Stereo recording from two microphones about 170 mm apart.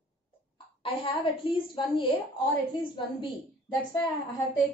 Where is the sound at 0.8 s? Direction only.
30° left (ahead or behind).